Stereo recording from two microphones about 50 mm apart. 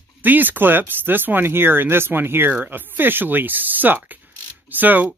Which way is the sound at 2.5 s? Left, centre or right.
Right.